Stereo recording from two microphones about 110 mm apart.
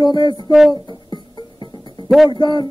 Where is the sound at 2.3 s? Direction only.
45° left (ahead or behind).